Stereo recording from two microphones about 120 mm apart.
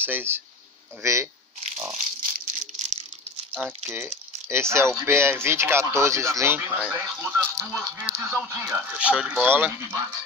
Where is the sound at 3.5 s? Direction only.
15° right (ahead or behind).